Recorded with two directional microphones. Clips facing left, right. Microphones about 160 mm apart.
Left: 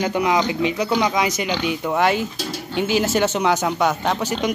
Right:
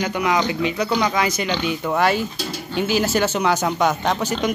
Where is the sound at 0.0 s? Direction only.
25° left (ahead or behind).